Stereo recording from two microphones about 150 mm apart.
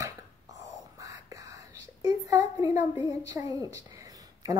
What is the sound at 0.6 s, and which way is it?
Whispering, 20° right (ahead or behind).